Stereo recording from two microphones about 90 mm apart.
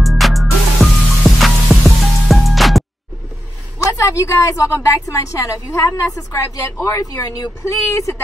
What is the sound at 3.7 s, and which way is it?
A woman's voice, 35° left (ahead or behind).